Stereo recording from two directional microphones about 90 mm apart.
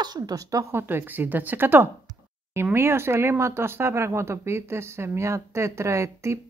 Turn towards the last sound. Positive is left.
turn(degrees=-30)  # may be behind; listen again after turning